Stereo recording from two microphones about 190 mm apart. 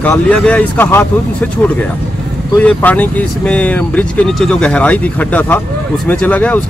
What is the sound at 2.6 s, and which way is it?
Speech, 10° left (ahead or behind).